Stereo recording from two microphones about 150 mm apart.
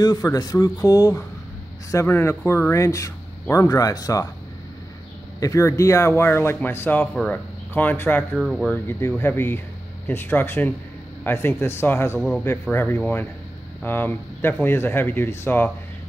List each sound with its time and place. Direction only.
0.0 s speech: 25° left (ahead or behind)
5.4 s speech: 20° left (ahead or behind)
8.4 s speech: centre (ahead or behind)
8.7 s speech: 15° left (ahead or behind)